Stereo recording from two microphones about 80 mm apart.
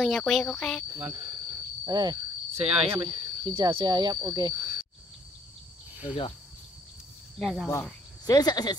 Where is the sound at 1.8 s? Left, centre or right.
Right.